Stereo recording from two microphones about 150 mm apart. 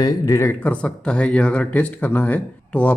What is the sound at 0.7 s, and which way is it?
Speech, 10° left (ahead or behind).